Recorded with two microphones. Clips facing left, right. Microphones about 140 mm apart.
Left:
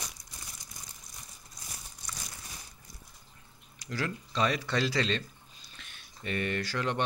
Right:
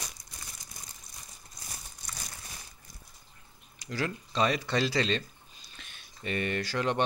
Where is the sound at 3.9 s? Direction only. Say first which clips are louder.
Right 1 dB; 20° right (ahead or behind).